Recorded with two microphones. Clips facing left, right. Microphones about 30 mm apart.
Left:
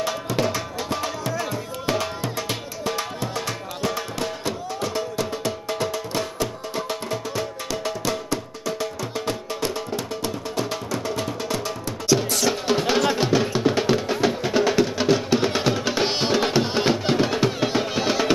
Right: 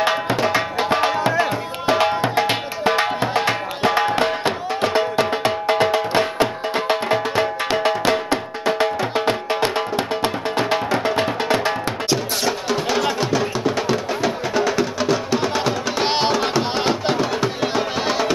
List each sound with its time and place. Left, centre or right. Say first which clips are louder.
0.0 s tabla: right 7 dB; right
0.4 s music: right 5 dB; right
12.4 s music: even; centre
16.0 s music: right 3 dB; centre
16.3 s music: right 1 dB; centre
16.7 s music: right 1 dB; centre
17.2 s music: right 1 dB; centre
18.0 s music: right 2 dB; centre